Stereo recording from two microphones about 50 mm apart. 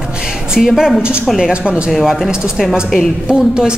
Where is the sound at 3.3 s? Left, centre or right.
Centre.